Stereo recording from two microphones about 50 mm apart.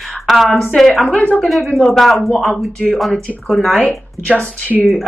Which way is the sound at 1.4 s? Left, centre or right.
Centre.